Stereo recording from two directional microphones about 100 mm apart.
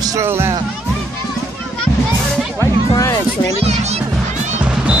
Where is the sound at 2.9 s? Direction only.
35° left (ahead or behind).